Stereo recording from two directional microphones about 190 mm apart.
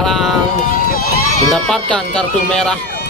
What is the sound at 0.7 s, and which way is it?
Run, 50° left (ahead or behind).